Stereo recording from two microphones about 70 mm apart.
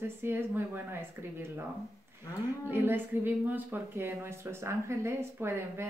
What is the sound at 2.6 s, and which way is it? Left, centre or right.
Speech, right.